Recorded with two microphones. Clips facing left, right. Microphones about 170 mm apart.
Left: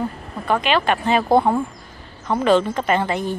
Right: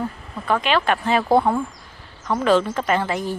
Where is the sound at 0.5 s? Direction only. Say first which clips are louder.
Left 1 dB; centre (ahead or behind).